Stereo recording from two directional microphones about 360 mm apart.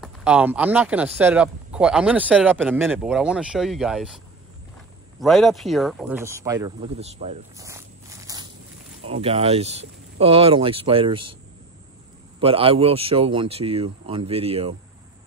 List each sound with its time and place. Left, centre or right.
0.0 s speech: centre
5.2 s speech: centre
12.4 s speech: centre